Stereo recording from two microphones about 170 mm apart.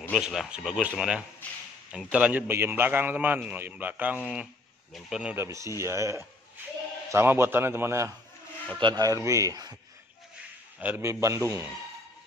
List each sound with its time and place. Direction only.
0.2 s a man's voice: centre (ahead or behind)
8.7 s speech: 25° right (ahead or behind)
10.8 s a man's voice: 15° right (ahead or behind)